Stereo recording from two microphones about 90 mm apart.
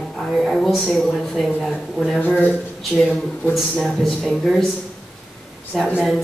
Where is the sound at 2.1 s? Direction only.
20° left (ahead or behind).